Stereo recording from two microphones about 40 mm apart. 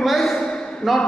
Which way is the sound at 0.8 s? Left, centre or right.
Centre.